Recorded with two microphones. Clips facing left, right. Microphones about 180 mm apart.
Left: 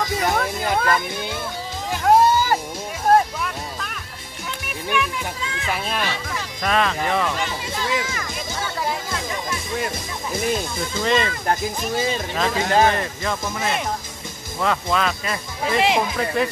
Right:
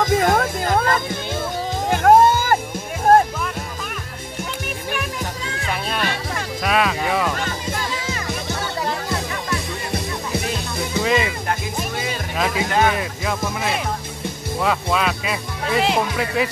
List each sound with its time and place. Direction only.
0.0 s music: 50° right (ahead or behind)
1.9 s music: 55° right (ahead or behind)
4.9 s music: 40° right (ahead or behind)
5.7 s music: centre (ahead or behind)
6.6 s speech: 5° right (ahead or behind)
10.8 s music: 5° right (ahead or behind)
12.4 s speech: 5° right (ahead or behind)